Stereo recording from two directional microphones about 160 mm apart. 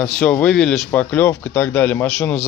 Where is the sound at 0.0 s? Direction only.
5° left (ahead or behind).